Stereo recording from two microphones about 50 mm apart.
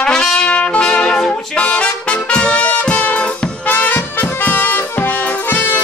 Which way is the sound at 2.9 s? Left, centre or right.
Left.